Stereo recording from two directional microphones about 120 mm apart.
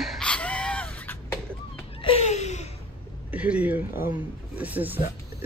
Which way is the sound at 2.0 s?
50° left (ahead or behind).